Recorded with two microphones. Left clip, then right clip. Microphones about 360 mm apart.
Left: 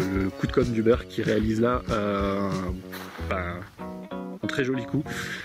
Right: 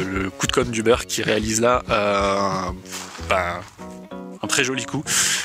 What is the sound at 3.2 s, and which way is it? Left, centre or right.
Music, centre.